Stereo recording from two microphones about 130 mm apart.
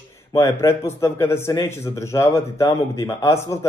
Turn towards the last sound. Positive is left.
turn(degrees=20)  # may be behind; listen again after turning